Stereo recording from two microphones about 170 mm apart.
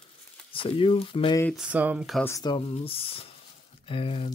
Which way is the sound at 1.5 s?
5° right (ahead or behind).